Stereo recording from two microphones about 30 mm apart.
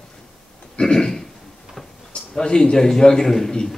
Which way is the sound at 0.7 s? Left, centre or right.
Left.